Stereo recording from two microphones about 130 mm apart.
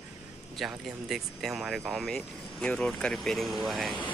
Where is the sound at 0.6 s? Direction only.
Centre (ahead or behind).